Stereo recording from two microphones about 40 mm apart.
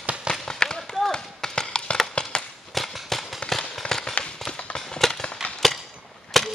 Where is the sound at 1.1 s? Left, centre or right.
Centre.